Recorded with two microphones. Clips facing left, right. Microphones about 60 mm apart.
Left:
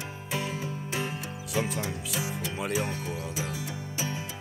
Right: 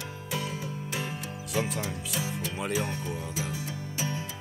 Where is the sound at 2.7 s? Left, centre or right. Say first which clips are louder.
Even; left.